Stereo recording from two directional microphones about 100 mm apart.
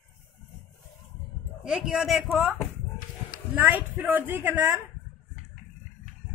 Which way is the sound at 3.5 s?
15° right (ahead or behind).